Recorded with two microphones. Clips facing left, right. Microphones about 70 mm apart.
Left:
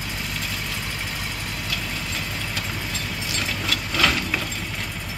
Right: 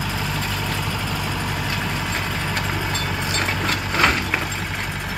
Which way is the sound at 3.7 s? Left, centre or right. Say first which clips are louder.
Right 2 dB; right.